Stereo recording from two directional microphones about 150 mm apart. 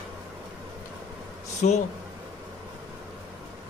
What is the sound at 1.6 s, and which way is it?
Speech, 60° left (ahead or behind).